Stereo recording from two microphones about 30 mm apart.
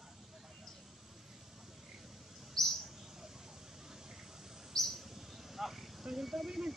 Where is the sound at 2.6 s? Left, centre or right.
Centre.